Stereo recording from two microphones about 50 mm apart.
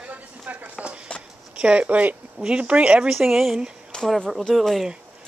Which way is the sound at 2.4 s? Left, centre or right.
Right.